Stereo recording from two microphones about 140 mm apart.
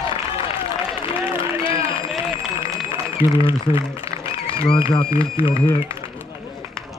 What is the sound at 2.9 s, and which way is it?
A man's voice, 40° left (ahead or behind).